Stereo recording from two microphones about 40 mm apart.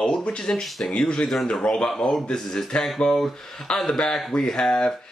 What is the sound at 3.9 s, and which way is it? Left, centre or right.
Speech, centre.